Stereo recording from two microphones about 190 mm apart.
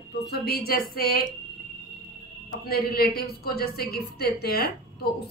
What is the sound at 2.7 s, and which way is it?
A woman's voice, 55° left (ahead or behind).